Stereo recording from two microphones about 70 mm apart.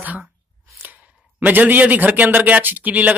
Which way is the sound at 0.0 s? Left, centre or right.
Right.